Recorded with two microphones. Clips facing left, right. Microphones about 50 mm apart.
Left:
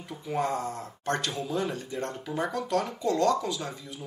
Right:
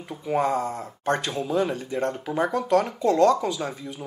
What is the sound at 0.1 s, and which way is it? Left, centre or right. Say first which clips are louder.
Speech: right 6 dB; right.